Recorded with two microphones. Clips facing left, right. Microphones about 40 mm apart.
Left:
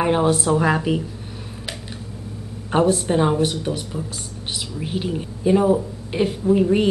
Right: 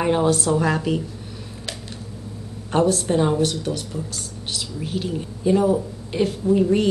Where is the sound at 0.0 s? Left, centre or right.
Centre.